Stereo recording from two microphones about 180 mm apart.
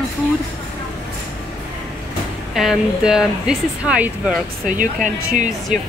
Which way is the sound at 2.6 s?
5° right (ahead or behind).